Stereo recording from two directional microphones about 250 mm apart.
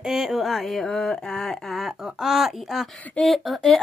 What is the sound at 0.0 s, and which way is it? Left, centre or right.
Speech, centre.